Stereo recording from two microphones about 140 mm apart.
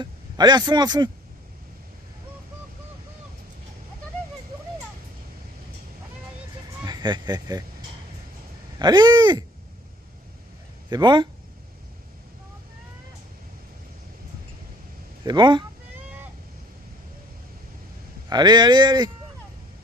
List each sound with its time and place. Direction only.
0.0 s a man's voice: 30° right (ahead or behind)
6.8 s speech: 30° right (ahead or behind)
8.7 s speech: 30° right (ahead or behind)
10.9 s speech: 30° right (ahead or behind)
15.2 s speech: 30° right (ahead or behind)
18.3 s speech: 30° right (ahead or behind)